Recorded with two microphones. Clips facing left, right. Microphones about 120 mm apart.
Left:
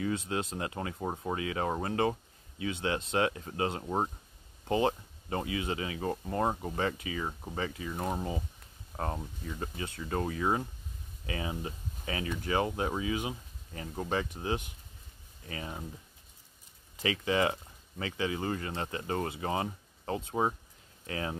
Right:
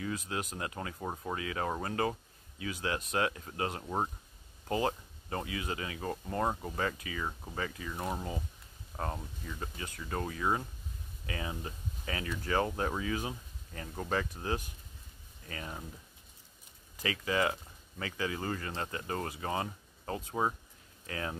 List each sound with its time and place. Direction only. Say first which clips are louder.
0.0 s speech: left 4 dB; 30° left (ahead or behind)
3.8 s speech: left 2 dB; 15° left (ahead or behind)
4.6 s speech: left 3 dB; 25° left (ahead or behind)
8.0 s speech: left 3 dB; 15° left (ahead or behind)
9.6 s speech: left 5 dB; 30° left (ahead or behind)
17.2 s speech: left 2 dB; 25° left (ahead or behind)